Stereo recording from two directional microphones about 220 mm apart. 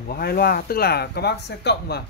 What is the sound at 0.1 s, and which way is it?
Speech, 45° left (ahead or behind).